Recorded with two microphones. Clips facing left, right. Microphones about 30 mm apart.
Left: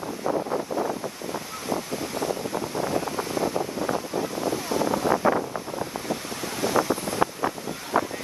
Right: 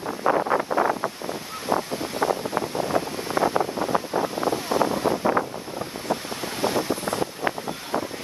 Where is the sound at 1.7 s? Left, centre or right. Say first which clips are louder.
Right 4 dB; right.